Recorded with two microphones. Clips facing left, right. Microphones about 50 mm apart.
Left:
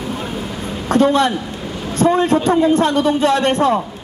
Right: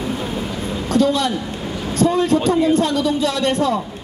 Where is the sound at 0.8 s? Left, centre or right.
Left.